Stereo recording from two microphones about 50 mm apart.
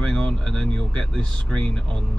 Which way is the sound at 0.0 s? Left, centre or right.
Centre.